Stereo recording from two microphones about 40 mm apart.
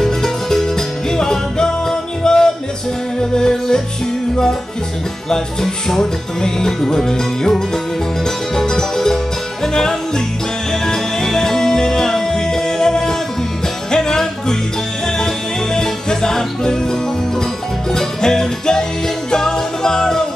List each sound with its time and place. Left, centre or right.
0.0 s music: centre
5.3 s music: centre
15.7 s music: centre
17.9 s music: centre